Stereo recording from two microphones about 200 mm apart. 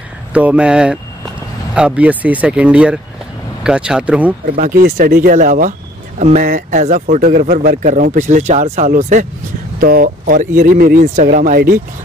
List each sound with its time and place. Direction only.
0.3 s speech: 5° right (ahead or behind)
4.6 s speech: 40° right (ahead or behind)
9.8 s speech: 45° right (ahead or behind)